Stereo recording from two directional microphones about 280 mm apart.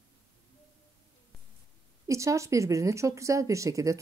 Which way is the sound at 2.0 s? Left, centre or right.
Centre.